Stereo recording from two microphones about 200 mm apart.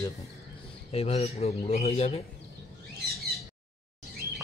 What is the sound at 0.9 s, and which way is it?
A man's voice, 30° left (ahead or behind).